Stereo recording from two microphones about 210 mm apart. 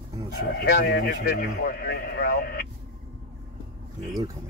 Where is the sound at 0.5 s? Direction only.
50° left (ahead or behind).